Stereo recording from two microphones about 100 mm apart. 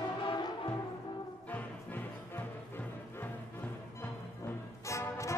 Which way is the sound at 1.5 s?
15° left (ahead or behind).